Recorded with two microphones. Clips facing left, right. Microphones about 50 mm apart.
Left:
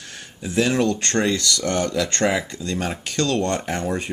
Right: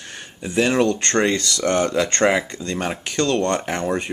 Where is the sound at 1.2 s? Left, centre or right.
Right.